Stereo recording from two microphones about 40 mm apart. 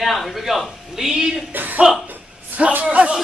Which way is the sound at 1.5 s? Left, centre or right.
Right.